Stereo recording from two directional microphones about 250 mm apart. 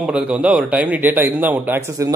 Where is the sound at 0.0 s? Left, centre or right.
Centre.